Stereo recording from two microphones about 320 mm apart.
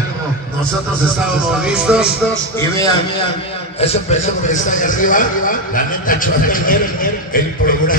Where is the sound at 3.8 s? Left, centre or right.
Centre.